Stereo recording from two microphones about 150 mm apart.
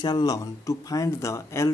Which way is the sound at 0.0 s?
25° left (ahead or behind).